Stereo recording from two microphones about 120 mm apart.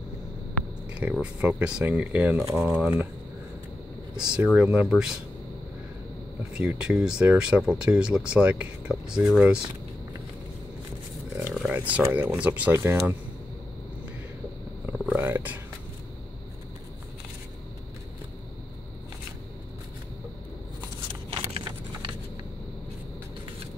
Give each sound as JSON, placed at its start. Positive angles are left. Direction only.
{"t": 0.9, "sound": "speech", "side_deg": -10}
{"t": 4.4, "sound": "speech", "side_deg": -10}
{"t": 6.5, "sound": "speech", "side_deg": -10}
{"t": 11.7, "sound": "speech", "side_deg": -15}
{"t": 14.9, "sound": "a sound", "side_deg": -15}
{"t": 21.1, "sound": "shuffling cards", "side_deg": -40}